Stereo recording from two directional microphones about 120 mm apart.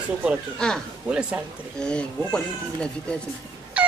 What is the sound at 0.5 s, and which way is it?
Speech, 5° left (ahead or behind).